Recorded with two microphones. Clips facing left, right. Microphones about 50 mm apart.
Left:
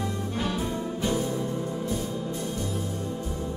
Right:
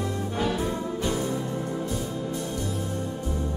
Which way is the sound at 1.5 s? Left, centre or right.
Right.